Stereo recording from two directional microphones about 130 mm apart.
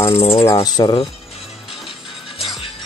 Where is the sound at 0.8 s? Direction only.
30° left (ahead or behind).